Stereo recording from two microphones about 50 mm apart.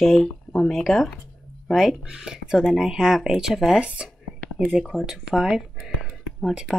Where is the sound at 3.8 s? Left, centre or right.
Right.